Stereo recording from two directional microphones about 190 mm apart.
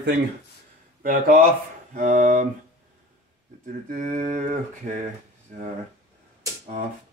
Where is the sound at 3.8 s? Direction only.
40° right (ahead or behind).